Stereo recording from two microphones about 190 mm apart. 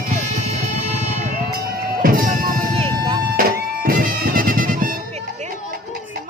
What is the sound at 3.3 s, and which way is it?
Music, 50° right (ahead or behind).